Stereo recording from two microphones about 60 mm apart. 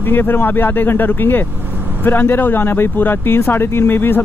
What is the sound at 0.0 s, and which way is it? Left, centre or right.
Speech, left.